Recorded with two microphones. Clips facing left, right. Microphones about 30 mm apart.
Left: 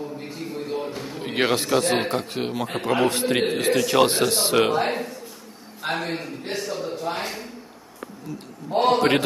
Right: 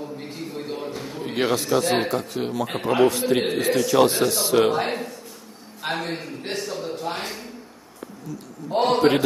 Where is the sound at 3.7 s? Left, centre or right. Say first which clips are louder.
Right 1 dB; left.